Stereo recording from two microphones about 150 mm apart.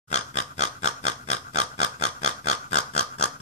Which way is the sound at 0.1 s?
50° left (ahead or behind).